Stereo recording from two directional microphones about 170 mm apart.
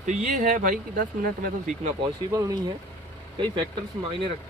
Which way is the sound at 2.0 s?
25° right (ahead or behind).